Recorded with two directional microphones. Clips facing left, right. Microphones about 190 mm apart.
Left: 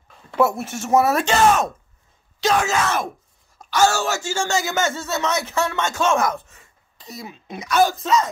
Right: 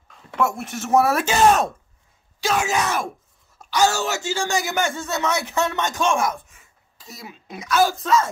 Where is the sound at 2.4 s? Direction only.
10° right (ahead or behind).